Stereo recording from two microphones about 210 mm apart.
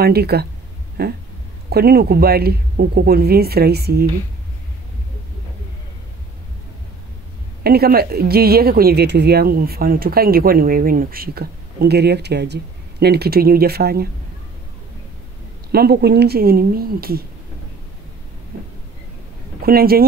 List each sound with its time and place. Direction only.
0.0 s speech: 50° right (ahead or behind)
7.6 s speech: 45° right (ahead or behind)
15.7 s speech: 50° right (ahead or behind)
19.6 s speech: 45° right (ahead or behind)